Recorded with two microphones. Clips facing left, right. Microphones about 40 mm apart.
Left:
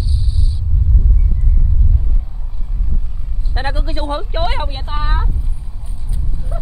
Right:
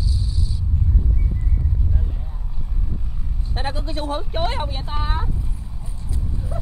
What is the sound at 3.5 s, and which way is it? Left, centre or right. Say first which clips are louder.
Speech: left 4 dB; left.